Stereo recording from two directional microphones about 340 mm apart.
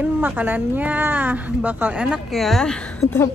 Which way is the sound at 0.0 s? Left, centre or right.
Centre.